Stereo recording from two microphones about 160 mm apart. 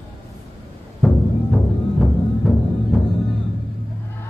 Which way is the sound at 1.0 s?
5° left (ahead or behind).